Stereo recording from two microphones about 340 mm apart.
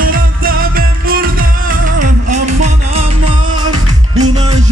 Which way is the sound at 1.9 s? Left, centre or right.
Right.